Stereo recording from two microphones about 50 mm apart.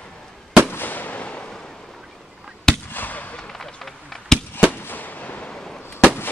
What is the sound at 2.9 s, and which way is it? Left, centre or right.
Fireworks, left.